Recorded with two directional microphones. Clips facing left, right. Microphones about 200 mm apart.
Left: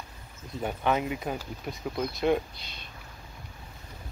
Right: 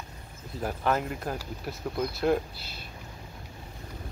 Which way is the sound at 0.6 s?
Centre (ahead or behind).